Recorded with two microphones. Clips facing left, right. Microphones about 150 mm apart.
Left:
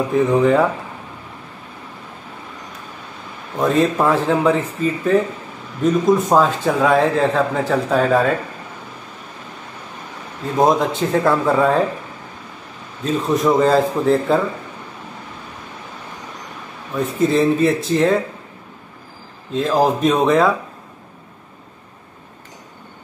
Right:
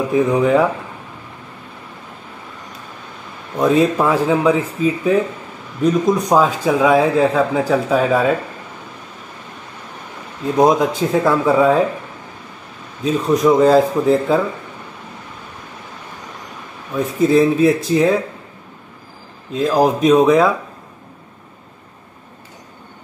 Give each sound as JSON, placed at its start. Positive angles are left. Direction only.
{"t": 0.1, "sound": "a man's voice", "side_deg": 0}
{"t": 3.5, "sound": "a man's voice", "side_deg": 0}
{"t": 10.6, "sound": "a man's voice", "side_deg": 0}
{"t": 13.0, "sound": "a man's voice", "side_deg": 0}
{"t": 16.9, "sound": "a man's voice", "side_deg": 0}
{"t": 19.5, "sound": "a man's voice", "side_deg": 0}